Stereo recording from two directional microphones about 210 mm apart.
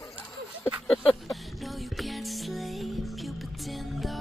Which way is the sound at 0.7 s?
Centre (ahead or behind).